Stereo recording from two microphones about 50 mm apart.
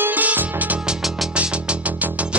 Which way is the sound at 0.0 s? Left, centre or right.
Right.